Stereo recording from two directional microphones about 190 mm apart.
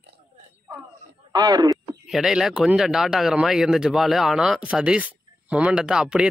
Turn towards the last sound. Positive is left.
turn(degrees=-5)  # may be behind; listen again after turning